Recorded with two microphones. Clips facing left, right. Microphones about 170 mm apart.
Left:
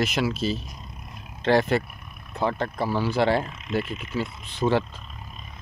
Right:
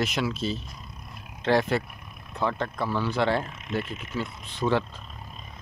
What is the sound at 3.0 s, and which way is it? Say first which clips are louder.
Speech: left 3 dB; 5° left (ahead or behind).